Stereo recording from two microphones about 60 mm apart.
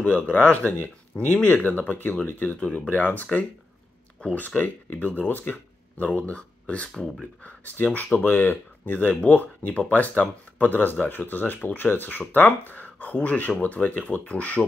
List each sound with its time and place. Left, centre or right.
0.0 s speech: left
8.9 s speech: left